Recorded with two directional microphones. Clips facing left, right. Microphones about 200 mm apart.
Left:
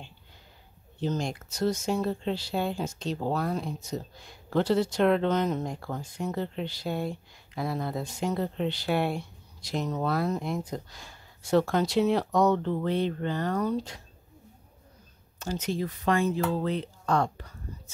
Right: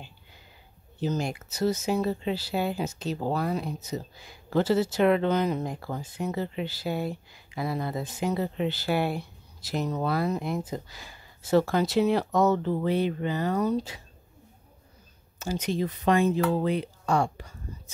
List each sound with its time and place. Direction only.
0.9 s speech: 5° right (ahead or behind)
15.3 s speech: 10° right (ahead or behind)